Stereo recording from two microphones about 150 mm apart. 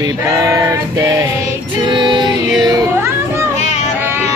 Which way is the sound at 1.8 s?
30° right (ahead or behind).